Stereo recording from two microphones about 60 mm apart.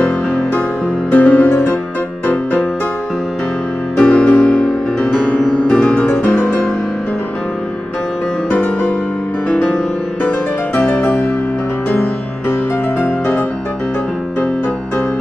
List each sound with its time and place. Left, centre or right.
1.1 s music: left
3.9 s music: centre
5.7 s music: centre
8.5 s music: left
9.5 s music: centre
10.8 s music: left